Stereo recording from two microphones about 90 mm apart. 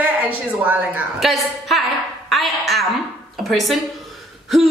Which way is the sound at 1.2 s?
Centre (ahead or behind).